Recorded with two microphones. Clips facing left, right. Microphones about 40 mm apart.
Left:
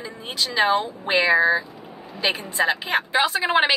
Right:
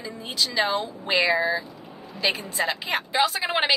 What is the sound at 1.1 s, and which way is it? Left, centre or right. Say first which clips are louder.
Speech: left 4 dB; centre.